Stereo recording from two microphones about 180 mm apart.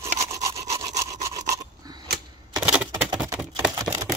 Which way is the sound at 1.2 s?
20° right (ahead or behind).